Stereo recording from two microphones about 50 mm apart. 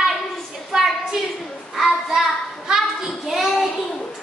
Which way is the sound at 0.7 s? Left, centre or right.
Centre.